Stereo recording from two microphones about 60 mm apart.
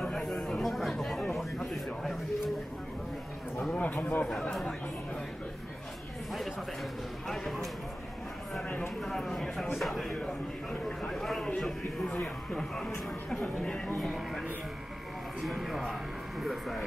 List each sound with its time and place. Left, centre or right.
0.0 s chatter: centre
0.6 s chatter: centre
1.3 s a sound: centre
3.7 s a man's voice: left
4.3 s speech: centre
7.2 s speech: centre
9.0 s a man's voice: centre
13.9 s a man's voice: centre
15.4 s a man's voice: centre